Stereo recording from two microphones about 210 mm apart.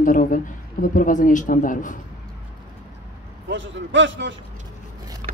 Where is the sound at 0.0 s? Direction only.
40° left (ahead or behind).